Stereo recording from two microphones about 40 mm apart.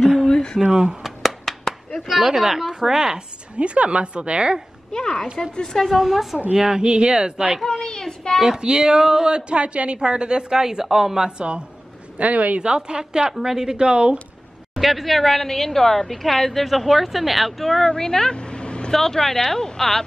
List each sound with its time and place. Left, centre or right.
0.3 s a sound: left
0.7 s a woman's voice: right
1.0 s a sound: centre
2.0 s speech: centre
3.5 s a woman's voice: right
4.9 s speech: centre
5.9 s speech: centre
6.5 s a woman's voice: centre
7.6 s speech: centre
8.4 s a woman's voice: centre
12.2 s speech: right
12.6 s a woman's voice: right
14.8 s speech: centre; by 18.9 s left
18.9 s speech: centre